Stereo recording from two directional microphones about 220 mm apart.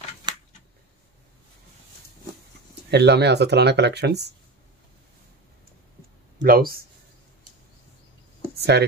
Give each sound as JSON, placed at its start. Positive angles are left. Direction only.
{"t": 0.3, "sound": "scissors", "side_deg": -20}
{"t": 2.9, "sound": "speech", "side_deg": -50}
{"t": 6.4, "sound": "speech", "side_deg": -40}
{"t": 8.5, "sound": "speech", "side_deg": -50}